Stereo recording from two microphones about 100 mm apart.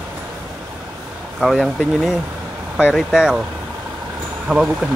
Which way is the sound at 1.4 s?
Centre (ahead or behind).